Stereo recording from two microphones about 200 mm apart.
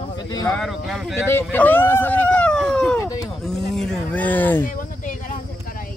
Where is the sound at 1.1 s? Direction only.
10° left (ahead or behind).